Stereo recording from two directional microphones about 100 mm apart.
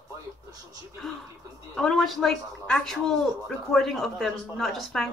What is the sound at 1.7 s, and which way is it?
Speech, centre (ahead or behind).